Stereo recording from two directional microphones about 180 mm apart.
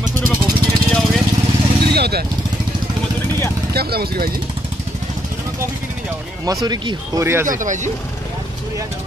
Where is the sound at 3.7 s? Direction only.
60° right (ahead or behind).